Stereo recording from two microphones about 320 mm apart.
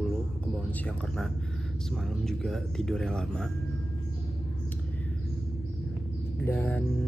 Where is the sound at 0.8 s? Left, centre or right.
Centre.